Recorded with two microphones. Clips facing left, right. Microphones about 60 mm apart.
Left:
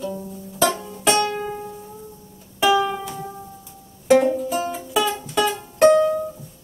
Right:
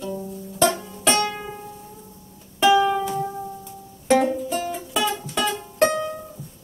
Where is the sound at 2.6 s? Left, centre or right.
Centre.